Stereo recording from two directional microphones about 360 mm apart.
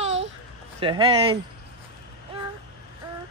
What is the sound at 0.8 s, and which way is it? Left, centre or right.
Speech, centre.